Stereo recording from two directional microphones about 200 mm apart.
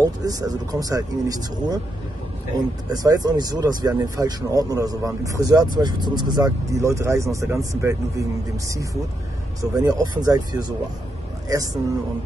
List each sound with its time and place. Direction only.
0.0 s speech: 15° right (ahead or behind)
2.9 s speech: 20° right (ahead or behind)
9.6 s a man's voice: 15° right (ahead or behind)